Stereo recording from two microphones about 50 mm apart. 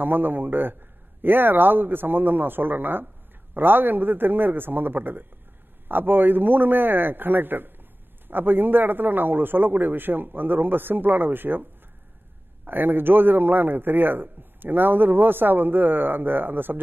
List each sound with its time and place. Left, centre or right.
0.0 s a man's voice: right
12.6 s a man's voice: right